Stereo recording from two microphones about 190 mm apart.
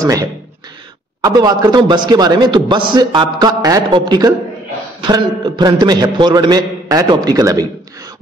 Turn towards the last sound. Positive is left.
turn(degrees=-20)  # may be behind; listen again after turning